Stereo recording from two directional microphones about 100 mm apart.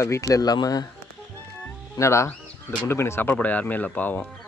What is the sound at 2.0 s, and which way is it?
Speech, 30° left (ahead or behind).